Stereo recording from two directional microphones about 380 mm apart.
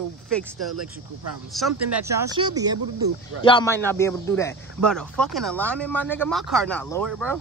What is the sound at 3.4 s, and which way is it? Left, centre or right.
A man's voice, centre.